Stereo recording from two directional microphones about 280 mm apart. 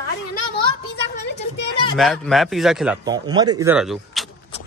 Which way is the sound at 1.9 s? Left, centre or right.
Centre.